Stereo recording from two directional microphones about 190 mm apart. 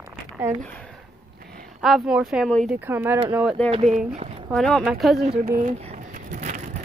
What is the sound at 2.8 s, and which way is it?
Speech, 10° right (ahead or behind).